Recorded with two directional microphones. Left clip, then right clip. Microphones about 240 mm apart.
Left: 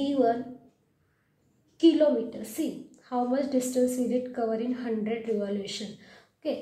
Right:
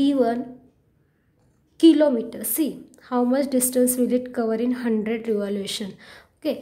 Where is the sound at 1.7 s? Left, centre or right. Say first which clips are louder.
Right 5 dB; right.